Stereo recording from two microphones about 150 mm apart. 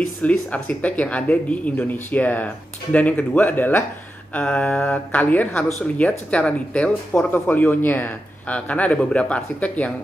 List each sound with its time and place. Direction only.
0.2 s speech: 10° left (ahead or behind)